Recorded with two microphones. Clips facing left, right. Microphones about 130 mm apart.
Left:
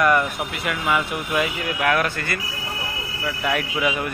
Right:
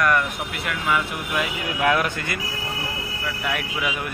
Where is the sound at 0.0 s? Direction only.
5° left (ahead or behind).